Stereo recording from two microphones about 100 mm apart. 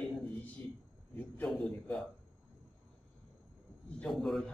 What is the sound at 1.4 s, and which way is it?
Speech, centre (ahead or behind).